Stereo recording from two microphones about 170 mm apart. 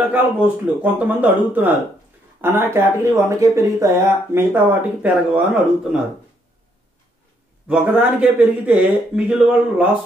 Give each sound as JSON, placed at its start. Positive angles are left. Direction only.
{"t": 0.1, "sound": "speech", "side_deg": -10}
{"t": 7.6, "sound": "speech", "side_deg": -5}